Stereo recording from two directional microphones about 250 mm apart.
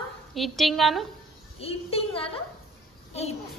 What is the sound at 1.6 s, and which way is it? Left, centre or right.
A woman's voice, left.